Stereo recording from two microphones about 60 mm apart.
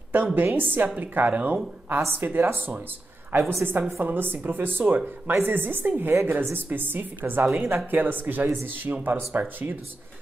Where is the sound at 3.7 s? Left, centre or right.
Right.